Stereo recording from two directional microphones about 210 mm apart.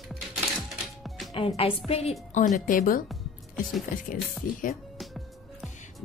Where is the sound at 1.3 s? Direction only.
25° left (ahead or behind); by 3.0 s 40° left (ahead or behind).